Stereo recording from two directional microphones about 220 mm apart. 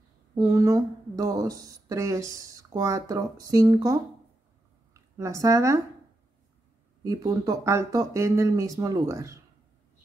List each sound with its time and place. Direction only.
0.3 s speech: 15° right (ahead or behind)
5.1 s speech: 15° right (ahead or behind)
7.0 s speech: 15° right (ahead or behind)